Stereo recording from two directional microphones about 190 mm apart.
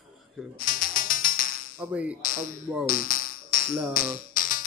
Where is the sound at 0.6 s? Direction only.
50° left (ahead or behind).